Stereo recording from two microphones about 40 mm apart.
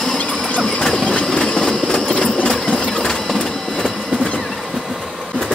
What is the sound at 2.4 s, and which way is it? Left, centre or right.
Sewing machine, centre.